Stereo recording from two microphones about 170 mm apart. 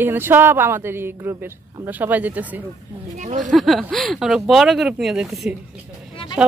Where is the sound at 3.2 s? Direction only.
45° right (ahead or behind).